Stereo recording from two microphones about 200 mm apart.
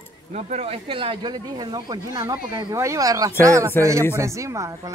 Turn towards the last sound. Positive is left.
turn(degrees=-15)  # may be behind; listen again after turning